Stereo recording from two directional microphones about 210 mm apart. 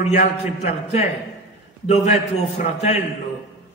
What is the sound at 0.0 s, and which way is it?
A man's voice, 30° left (ahead or behind).